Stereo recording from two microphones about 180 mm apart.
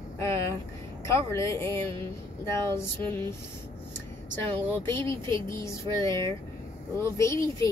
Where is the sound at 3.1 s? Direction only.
15° left (ahead or behind).